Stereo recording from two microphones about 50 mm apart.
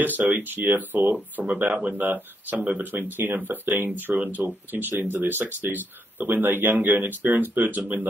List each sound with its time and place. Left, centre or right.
0.0 s speech: right